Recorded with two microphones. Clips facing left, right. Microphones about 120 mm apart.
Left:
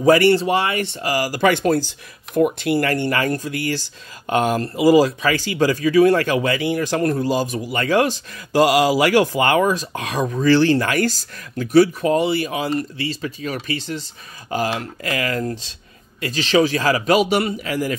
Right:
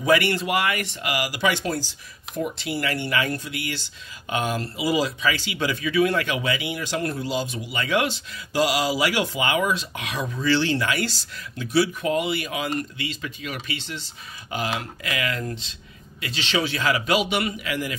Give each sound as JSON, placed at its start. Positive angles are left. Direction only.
{"t": 0.0, "sound": "a man's voice", "side_deg": 35}
{"t": 8.5, "sound": "a man's voice", "side_deg": 55}